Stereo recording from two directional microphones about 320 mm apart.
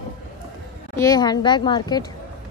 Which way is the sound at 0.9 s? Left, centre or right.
Centre.